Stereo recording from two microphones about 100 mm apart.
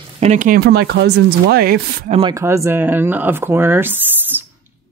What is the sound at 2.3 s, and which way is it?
Speech, 30° right (ahead or behind).